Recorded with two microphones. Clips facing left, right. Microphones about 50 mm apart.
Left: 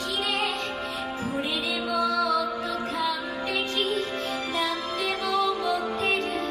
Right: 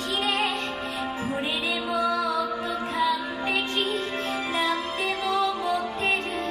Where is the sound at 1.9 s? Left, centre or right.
Right.